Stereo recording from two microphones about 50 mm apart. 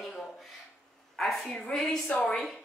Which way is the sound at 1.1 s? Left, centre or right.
Centre.